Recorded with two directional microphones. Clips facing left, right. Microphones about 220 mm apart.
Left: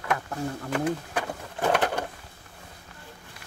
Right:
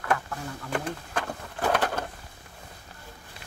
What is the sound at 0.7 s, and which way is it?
Pigeon, 10° left (ahead or behind).